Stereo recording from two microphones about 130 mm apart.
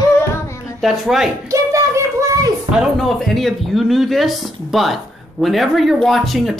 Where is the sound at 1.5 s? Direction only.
25° right (ahead or behind).